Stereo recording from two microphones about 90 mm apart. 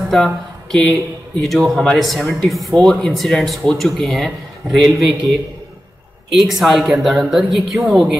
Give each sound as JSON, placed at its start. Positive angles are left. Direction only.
{"t": 0.1, "sound": "speech", "side_deg": 5}
{"t": 6.3, "sound": "speech", "side_deg": 0}